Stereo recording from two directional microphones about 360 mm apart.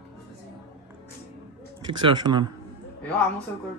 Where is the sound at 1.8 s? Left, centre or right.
Centre.